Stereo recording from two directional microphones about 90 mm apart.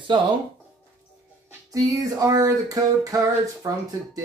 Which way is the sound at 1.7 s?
40° right (ahead or behind).